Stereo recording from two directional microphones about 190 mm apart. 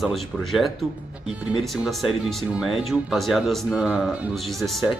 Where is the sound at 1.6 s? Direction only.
Centre (ahead or behind).